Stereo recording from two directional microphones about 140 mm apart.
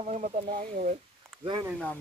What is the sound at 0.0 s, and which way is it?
Speech, 60° right (ahead or behind).